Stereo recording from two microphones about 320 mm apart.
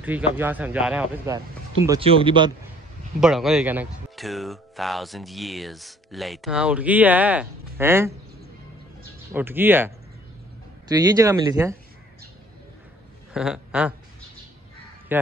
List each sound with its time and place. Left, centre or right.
0.0 s speech: centre
3.2 s speech: centre
9.3 s speech: centre
13.3 s speech: centre